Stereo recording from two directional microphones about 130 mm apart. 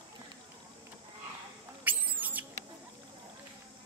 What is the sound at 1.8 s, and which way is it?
Rodents, 15° right (ahead or behind).